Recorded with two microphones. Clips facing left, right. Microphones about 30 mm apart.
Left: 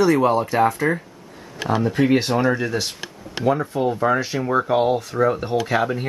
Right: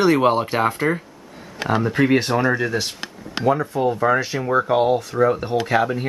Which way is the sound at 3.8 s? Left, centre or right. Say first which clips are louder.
Right 1 dB; centre.